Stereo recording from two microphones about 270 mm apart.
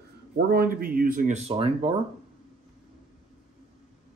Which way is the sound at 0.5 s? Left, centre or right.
Right.